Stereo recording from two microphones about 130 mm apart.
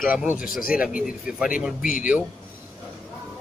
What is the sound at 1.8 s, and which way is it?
Speech, 90° left.